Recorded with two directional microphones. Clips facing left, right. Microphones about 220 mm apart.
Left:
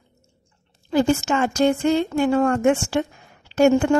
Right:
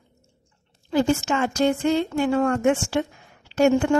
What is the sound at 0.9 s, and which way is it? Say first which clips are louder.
Speech: left 2 dB; 50° left (ahead or behind).